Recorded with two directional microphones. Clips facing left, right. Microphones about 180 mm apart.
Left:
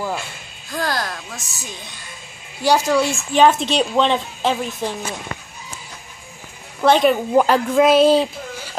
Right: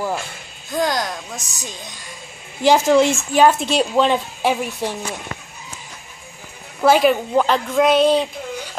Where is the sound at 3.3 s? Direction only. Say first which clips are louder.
Even; 10° right (ahead or behind).